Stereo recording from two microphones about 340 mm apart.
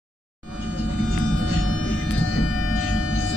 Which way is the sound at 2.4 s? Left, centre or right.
Left.